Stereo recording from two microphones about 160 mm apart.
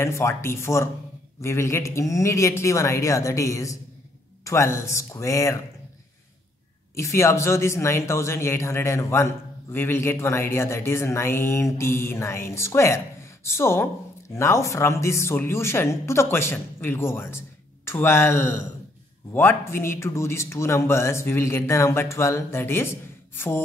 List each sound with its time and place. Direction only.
0.0 s speech: 15° left (ahead or behind)
7.0 s speech: 15° left (ahead or behind)